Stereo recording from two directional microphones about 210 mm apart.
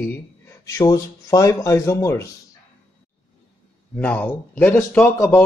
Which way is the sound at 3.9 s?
5° left (ahead or behind).